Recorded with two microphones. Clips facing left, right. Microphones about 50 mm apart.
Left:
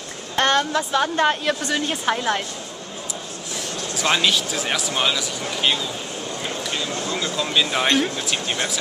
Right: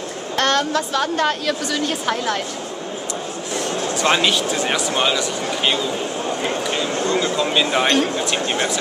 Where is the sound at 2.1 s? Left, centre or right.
Centre.